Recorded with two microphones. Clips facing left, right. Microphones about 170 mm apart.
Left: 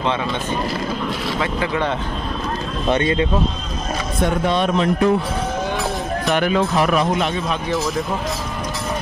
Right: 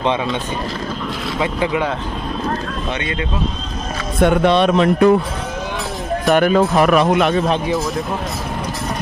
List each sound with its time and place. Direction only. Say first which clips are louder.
1.4 s speech: right 4 dB; 15° right (ahead or behind)
4.2 s speech: right 6 dB; 70° right (ahead or behind)
6.2 s speech: right 5 dB; 50° right (ahead or behind)
6.9 s a man's voice: right 5 dB; 65° right (ahead or behind)